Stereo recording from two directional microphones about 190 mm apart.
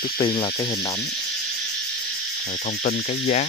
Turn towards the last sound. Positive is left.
turn(degrees=45)  # may be behind; listen again after turning